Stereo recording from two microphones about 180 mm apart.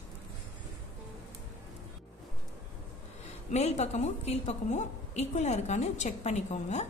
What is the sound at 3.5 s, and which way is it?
A woman's voice, 40° left (ahead or behind).